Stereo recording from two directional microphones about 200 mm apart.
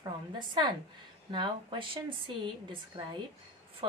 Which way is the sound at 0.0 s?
20° right (ahead or behind).